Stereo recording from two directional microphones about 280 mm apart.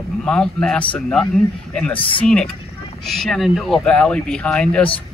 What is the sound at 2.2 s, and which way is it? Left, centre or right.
Speech, centre.